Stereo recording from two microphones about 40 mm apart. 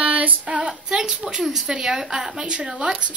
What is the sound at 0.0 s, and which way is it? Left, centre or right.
Female singing, right.